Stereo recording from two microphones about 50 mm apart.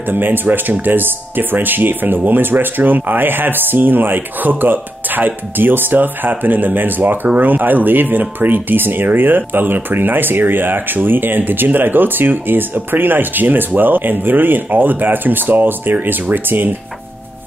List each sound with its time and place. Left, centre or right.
0.1 s speech: right